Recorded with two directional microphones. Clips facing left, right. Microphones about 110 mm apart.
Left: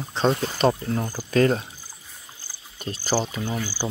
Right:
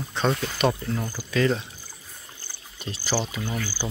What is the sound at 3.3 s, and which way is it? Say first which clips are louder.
Speech: left 2 dB; 15° left (ahead or behind).